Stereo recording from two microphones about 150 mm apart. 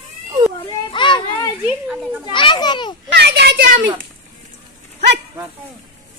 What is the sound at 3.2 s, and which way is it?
Speech, 90° right.